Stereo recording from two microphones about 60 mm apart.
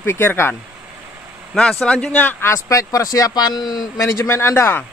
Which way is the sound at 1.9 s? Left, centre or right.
Left.